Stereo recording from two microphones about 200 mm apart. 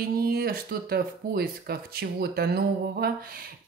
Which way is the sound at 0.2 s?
50° right (ahead or behind).